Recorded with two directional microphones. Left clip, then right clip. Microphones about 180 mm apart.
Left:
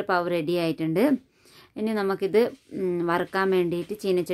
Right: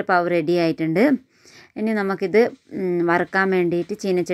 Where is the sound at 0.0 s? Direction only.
15° right (ahead or behind).